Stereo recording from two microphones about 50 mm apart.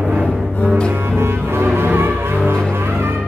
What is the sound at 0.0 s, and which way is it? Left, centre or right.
Double bass, right.